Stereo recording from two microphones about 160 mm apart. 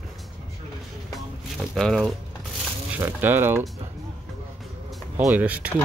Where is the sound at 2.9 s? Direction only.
15° right (ahead or behind).